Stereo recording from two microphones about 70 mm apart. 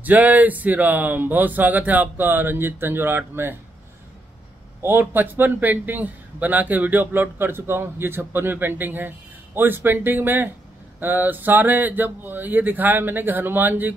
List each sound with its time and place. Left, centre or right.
0.0 s a man's voice: right
4.8 s a man's voice: right